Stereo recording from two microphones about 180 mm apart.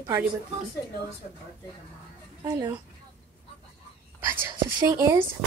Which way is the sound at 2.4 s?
20° right (ahead or behind).